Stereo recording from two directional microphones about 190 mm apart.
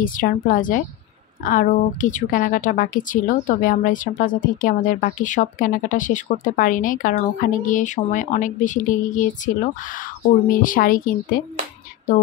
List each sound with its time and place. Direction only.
0.0 s a woman's voice: 45° left (ahead or behind)